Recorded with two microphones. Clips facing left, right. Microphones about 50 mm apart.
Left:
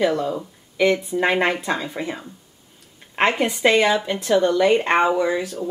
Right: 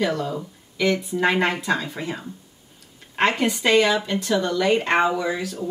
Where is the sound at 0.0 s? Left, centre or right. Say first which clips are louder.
Left 3 dB; centre.